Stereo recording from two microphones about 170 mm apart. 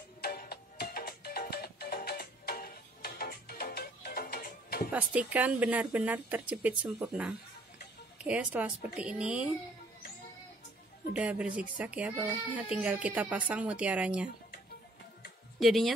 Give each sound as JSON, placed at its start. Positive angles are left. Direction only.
{"t": 0.2, "sound": "music", "side_deg": 60}
{"t": 4.9, "sound": "a child's voice", "side_deg": -10}
{"t": 11.1, "sound": "a child's voice", "side_deg": -5}
{"t": 15.6, "sound": "a woman's voice", "side_deg": 0}